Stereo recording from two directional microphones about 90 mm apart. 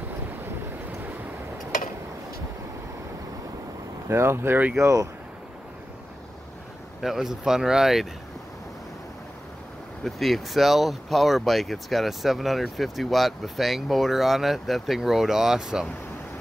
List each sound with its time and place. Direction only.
4.1 s speech: 30° right (ahead or behind)
4.7 s speech: 35° right (ahead or behind)
7.0 s speech: 5° right (ahead or behind)
10.0 s speech: centre (ahead or behind)